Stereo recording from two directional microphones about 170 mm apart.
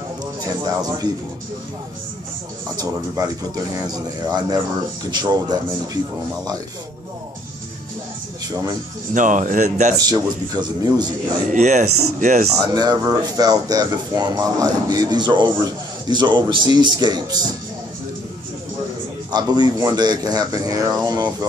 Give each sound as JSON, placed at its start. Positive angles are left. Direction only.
{"t": 0.4, "sound": "speech", "side_deg": -20}
{"t": 2.7, "sound": "speech", "side_deg": -20}
{"t": 9.1, "sound": "speech", "side_deg": -50}
{"t": 9.9, "sound": "speech", "side_deg": -20}
{"t": 11.5, "sound": "speech", "side_deg": -45}
{"t": 12.6, "sound": "speech", "side_deg": -25}
{"t": 19.3, "sound": "speech", "side_deg": -25}